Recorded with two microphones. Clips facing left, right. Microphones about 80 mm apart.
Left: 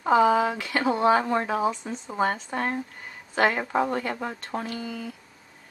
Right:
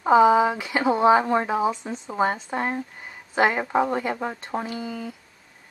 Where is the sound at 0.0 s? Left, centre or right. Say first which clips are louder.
Right 4 dB; centre.